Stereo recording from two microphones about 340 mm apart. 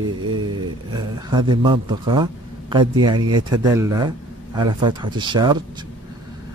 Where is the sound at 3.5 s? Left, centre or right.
Centre.